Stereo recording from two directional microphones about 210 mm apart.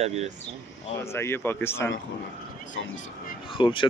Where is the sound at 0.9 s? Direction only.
10° left (ahead or behind).